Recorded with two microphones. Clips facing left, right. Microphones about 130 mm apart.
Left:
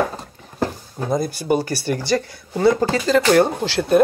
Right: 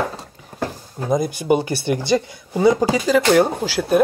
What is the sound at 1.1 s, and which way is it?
Speech, 15° right (ahead or behind).